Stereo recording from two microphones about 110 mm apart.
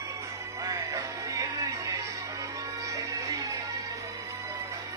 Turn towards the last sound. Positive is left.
turn(degrees=-30)  # may be behind; listen again after turning